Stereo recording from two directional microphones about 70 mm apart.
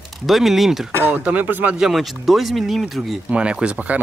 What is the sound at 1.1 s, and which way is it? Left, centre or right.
Speech, right.